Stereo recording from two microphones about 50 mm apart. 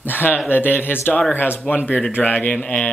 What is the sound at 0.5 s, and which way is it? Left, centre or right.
Speech, left.